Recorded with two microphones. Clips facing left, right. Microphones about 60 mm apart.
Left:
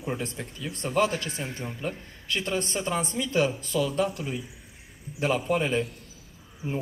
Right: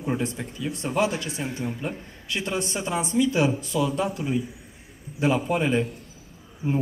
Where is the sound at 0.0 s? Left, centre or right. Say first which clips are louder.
Right 5 dB; right.